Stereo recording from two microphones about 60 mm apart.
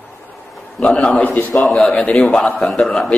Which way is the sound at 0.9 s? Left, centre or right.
Left.